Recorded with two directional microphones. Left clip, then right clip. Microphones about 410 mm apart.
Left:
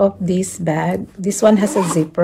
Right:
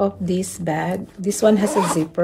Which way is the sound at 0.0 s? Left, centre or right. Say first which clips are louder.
Left 5 dB; centre.